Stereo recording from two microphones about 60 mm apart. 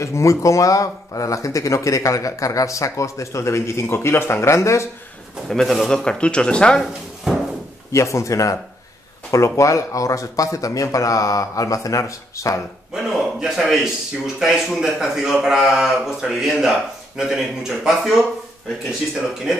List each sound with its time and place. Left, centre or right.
0.0 s speech: left
5.5 s speech: centre
6.8 s drawer open or close: centre
7.9 s a man's voice: left
12.9 s a man's voice: centre